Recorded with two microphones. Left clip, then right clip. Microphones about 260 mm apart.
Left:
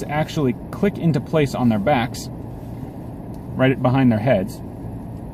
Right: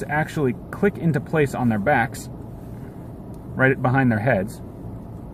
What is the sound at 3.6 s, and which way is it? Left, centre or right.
Speech, right.